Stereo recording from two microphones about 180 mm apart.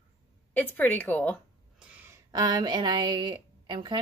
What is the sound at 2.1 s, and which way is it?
A woman's voice, 20° right (ahead or behind).